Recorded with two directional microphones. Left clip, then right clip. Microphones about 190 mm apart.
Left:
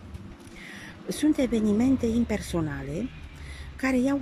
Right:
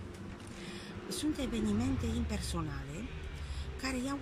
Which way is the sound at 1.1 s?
40° left (ahead or behind).